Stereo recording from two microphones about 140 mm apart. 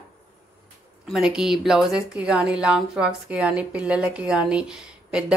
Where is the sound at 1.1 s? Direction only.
5° right (ahead or behind).